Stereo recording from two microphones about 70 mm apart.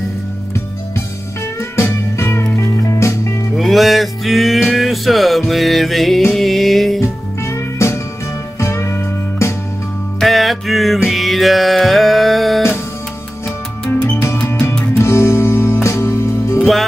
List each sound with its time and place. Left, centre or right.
1.8 s music: left
3.5 s music: centre
7.0 s music: left
10.2 s music: centre
14.0 s music: left